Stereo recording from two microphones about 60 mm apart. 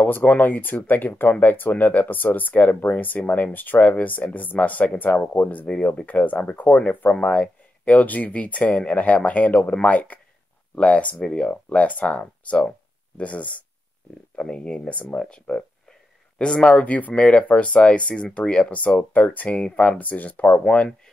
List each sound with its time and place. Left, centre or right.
0.0 s speech: left